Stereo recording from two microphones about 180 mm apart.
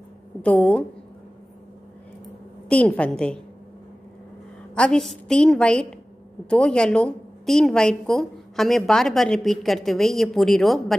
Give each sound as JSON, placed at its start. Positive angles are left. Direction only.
{"t": 0.4, "sound": "a woman's voice", "side_deg": 5}
{"t": 2.7, "sound": "a woman's voice", "side_deg": 5}
{"t": 4.7, "sound": "a woman's voice", "side_deg": 5}